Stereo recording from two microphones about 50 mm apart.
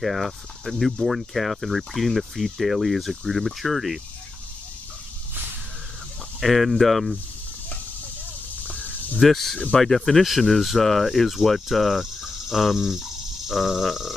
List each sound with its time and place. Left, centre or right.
0.0 s speech: centre
6.4 s speech: centre
8.6 s a sound: left
9.2 s speech: centre